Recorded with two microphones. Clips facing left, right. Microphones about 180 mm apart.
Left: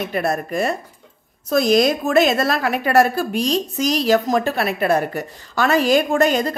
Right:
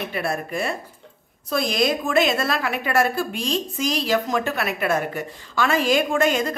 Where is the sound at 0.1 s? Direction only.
40° left (ahead or behind).